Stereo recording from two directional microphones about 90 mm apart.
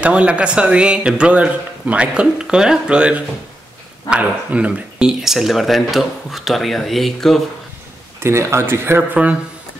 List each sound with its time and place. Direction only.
0.0 s a man's voice: 15° right (ahead or behind); by 7.4 s 5° left (ahead or behind)
8.2 s speech: 30° right (ahead or behind)